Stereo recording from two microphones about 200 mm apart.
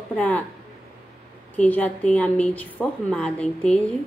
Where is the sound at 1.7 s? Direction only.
5° left (ahead or behind).